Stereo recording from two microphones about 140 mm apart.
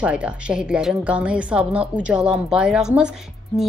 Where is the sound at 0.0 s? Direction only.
5° right (ahead or behind).